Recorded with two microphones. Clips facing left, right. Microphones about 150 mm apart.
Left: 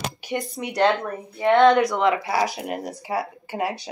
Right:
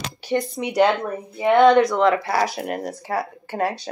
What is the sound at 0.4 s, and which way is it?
Speech, centre (ahead or behind).